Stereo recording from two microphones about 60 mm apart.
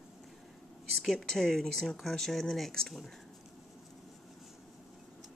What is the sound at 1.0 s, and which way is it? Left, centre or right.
A woman's voice, centre.